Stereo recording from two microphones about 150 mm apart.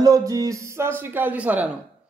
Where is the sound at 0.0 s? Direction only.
25° right (ahead or behind).